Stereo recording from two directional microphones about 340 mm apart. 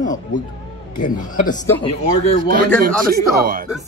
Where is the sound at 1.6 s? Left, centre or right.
Centre.